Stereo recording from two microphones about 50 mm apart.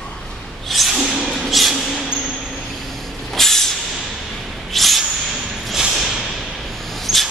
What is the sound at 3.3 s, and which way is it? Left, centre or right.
Vehicle, centre.